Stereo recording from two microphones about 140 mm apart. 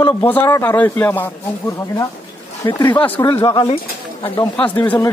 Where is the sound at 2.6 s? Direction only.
30° left (ahead or behind).